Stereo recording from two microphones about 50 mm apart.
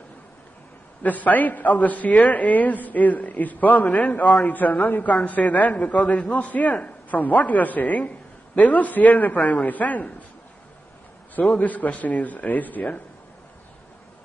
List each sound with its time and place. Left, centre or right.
1.0 s a woman's voice: left
11.5 s a woman's voice: left